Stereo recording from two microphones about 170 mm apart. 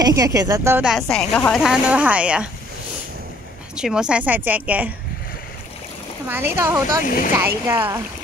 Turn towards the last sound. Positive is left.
turn(degrees=-15)  # may be behind; listen again after turning